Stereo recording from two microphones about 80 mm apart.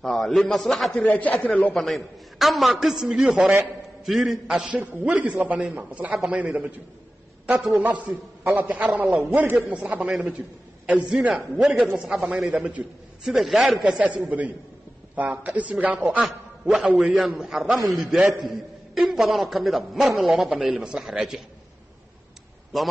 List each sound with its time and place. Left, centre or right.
0.0 s a man's voice: centre
1.0 s a man's voice: centre
1.7 s a man's voice: centre
4.7 s a man's voice: centre
7.7 s a man's voice: right; by 13.7 s centre
13.8 s a man's voice: centre
22.7 s a man's voice: centre